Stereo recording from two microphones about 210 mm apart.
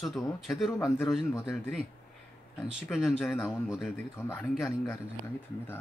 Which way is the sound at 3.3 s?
15° left (ahead or behind).